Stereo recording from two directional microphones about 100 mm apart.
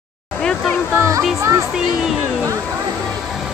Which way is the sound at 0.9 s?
35° right (ahead or behind).